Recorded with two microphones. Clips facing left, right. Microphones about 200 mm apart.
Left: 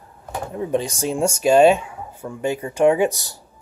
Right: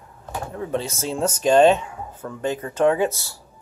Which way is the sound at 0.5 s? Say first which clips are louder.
Left 4 dB; 15° left (ahead or behind).